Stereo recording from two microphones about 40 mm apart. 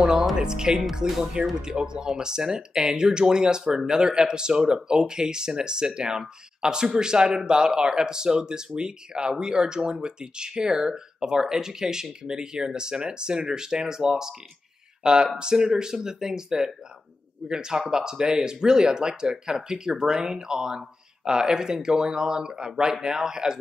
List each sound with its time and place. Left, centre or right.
0.0 s music: centre
0.4 s speech: centre
0.9 s speech: centre
1.3 s speech: right